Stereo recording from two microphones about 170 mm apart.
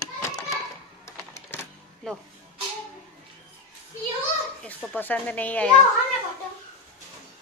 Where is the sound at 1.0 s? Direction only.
15° left (ahead or behind).